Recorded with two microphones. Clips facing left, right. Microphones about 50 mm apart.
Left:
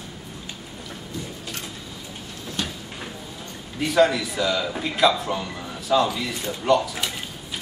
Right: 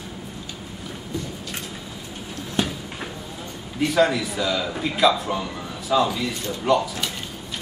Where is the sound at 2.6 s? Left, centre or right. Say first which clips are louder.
Right 6 dB; centre.